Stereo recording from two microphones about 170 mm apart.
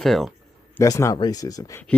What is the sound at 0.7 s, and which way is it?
Speech, 20° left (ahead or behind).